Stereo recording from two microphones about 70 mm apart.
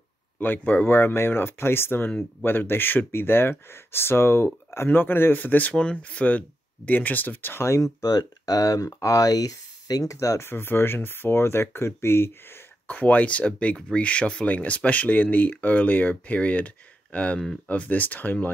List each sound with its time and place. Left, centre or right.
0.4 s speech: left
8.0 s speech: left
10.1 s speech: left
10.4 s speech: left
12.9 s speech: left